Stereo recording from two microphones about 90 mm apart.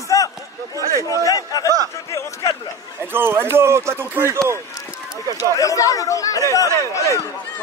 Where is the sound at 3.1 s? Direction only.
25° right (ahead or behind).